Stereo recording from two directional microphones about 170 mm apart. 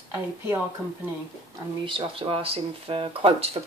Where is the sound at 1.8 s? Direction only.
30° right (ahead or behind).